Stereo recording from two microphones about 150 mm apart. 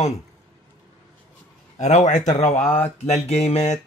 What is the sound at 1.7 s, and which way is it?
Speech, 50° left (ahead or behind).